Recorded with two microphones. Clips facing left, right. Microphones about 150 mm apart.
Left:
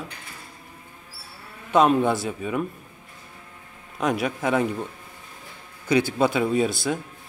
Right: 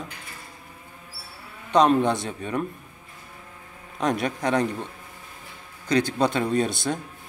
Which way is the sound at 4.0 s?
Centre (ahead or behind).